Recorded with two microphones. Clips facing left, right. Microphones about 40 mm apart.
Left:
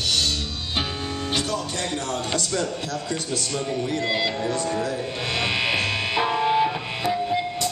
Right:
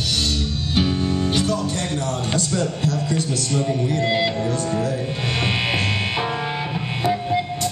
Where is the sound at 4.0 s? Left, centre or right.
Centre.